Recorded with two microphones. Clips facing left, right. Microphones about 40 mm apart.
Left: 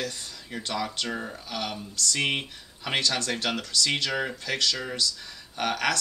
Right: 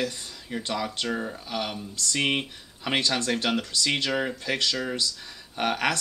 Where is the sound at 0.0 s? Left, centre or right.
Centre.